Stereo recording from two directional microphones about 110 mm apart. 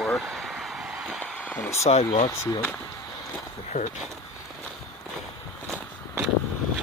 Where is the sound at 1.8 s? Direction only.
75° left (ahead or behind).